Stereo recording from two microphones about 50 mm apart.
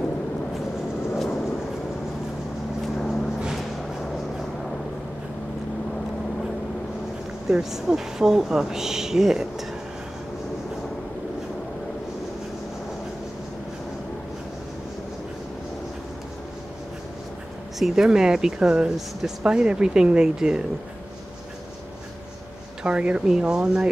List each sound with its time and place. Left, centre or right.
1.1 s vehicle: centre
7.4 s speech: centre
17.7 s speech: centre
22.8 s speech: right